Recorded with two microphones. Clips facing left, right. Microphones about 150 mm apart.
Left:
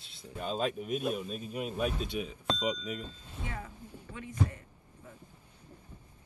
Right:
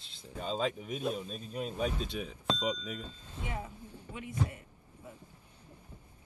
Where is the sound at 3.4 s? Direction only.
15° right (ahead or behind).